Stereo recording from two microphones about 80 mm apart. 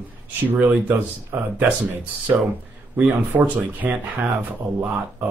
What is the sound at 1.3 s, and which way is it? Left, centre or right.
Speech, right.